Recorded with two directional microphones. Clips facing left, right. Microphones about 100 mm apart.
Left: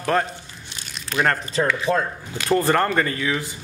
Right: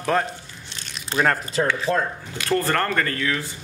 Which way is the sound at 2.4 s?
15° left (ahead or behind).